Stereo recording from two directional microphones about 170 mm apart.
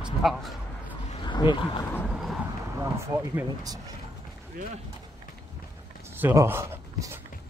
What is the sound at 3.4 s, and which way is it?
Speech, 20° right (ahead or behind).